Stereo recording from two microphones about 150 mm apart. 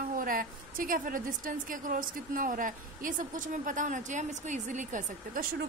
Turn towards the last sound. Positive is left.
turn(degrees=-55)  # may be behind; listen again after turning